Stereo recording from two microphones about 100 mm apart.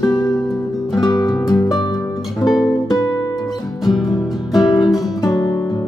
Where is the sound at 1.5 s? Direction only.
40° left (ahead or behind).